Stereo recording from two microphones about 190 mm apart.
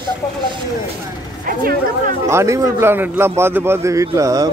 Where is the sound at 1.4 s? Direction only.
50° right (ahead or behind).